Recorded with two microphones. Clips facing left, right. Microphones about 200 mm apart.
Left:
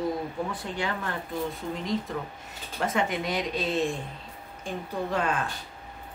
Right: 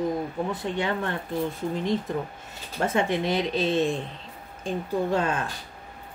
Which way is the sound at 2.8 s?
30° right (ahead or behind).